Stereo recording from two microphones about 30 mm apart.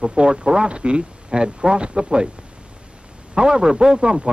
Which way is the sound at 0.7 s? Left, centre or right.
Right.